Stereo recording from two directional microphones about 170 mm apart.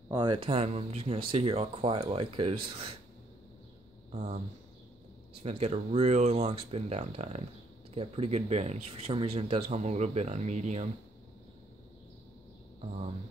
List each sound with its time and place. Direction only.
0.1 s speech: 25° right (ahead or behind)
4.1 s speech: 40° right (ahead or behind)
5.4 s speech: 35° right (ahead or behind)